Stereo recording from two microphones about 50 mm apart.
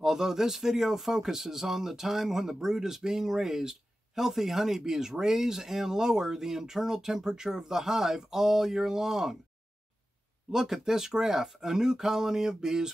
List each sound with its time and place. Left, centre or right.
0.0 s speech: centre
10.5 s speech: centre